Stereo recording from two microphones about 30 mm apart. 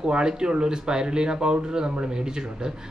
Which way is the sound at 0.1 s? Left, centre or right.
Right.